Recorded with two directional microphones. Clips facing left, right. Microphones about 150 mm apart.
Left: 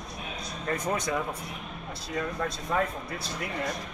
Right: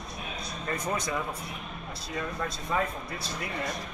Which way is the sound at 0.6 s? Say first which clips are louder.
Left 2 dB; 60° left (ahead or behind).